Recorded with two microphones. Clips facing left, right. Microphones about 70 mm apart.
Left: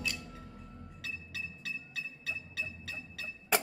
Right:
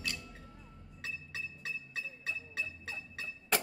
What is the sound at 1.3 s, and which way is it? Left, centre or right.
Music, right.